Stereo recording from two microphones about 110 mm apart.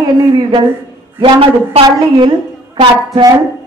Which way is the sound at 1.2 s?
55° right (ahead or behind).